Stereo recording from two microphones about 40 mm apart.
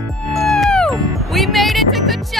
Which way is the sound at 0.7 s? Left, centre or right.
Centre.